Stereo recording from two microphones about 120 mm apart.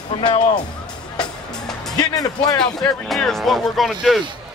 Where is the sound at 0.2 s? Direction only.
40° left (ahead or behind).